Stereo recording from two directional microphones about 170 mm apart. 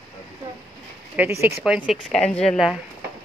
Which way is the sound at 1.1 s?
15° right (ahead or behind).